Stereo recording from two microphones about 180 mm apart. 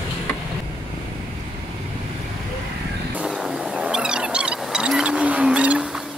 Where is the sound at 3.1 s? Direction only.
5° right (ahead or behind).